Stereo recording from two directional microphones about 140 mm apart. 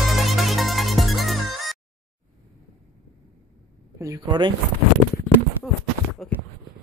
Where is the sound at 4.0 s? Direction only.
25° right (ahead or behind).